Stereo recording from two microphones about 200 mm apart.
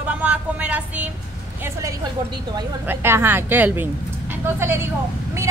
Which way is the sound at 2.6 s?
10° right (ahead or behind).